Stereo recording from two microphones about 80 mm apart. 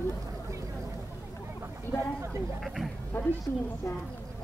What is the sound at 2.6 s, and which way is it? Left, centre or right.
Speech, centre.